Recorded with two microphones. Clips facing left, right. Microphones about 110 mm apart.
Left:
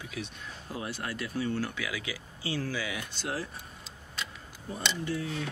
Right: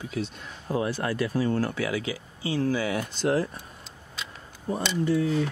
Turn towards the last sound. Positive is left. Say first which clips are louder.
# right 10 dB
turn(degrees=-45)  # may be behind; listen again after turning